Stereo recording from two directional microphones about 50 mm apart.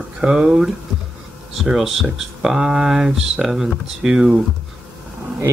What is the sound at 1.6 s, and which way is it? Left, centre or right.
Speech, centre.